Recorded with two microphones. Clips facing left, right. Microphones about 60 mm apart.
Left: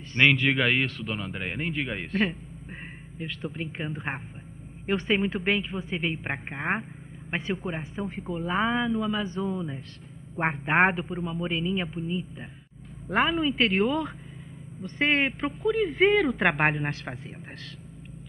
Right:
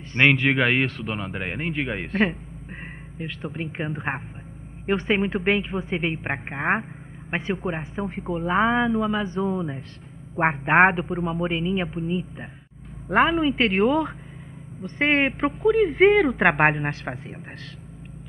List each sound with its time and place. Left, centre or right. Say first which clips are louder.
0.1 s a woman's voice: right 3 dB; right